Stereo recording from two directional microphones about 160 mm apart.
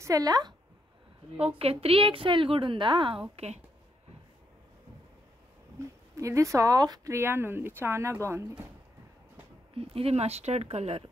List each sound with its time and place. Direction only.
0.0 s a woman's voice: 20° right (ahead or behind)
1.6 s a woman's voice: 35° right (ahead or behind)
3.3 s speech: 40° right (ahead or behind)
5.8 s speech: 20° right (ahead or behind)
9.8 s a woman's voice: 40° right (ahead or behind)